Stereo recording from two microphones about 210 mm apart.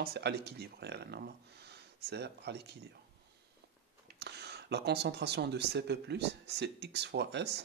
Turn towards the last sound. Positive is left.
turn(degrees=-55)  # may be behind; listen again after turning